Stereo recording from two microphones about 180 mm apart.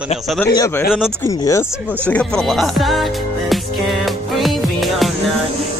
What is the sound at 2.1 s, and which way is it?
Music, 5° left (ahead or behind).